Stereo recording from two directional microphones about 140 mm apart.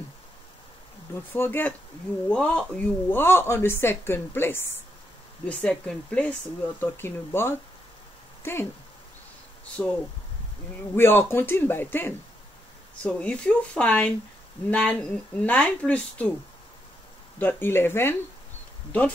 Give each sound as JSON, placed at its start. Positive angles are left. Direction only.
{"t": 1.3, "sound": "speech", "side_deg": 15}
{"t": 9.8, "sound": "speech", "side_deg": 0}
{"t": 11.0, "sound": "speech", "side_deg": 15}
{"t": 17.4, "sound": "speech", "side_deg": 15}